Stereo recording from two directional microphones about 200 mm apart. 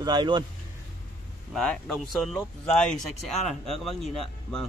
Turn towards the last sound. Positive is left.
turn(degrees=0)  # may be behind; listen again after turning